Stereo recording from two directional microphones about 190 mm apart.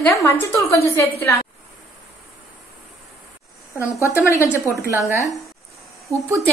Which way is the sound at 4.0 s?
15° left (ahead or behind).